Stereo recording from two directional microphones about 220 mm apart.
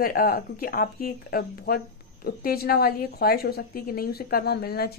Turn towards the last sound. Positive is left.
turn(degrees=45)  # may be behind; listen again after turning